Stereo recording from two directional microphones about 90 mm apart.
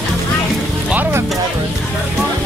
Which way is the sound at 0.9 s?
25° right (ahead or behind).